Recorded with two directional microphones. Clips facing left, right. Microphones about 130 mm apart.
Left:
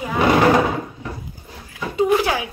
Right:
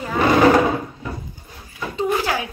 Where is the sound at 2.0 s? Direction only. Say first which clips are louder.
Left 4 dB; 15° left (ahead or behind).